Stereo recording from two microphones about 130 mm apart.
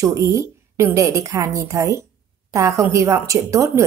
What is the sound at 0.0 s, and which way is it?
A woman's voice, 25° right (ahead or behind).